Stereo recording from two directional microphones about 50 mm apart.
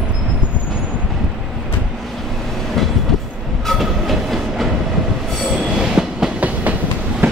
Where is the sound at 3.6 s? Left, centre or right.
Centre.